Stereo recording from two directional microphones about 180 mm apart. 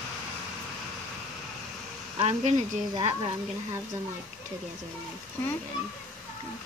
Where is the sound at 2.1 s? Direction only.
40° right (ahead or behind).